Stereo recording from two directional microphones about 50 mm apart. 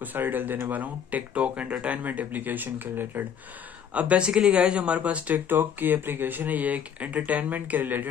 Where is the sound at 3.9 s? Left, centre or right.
Right.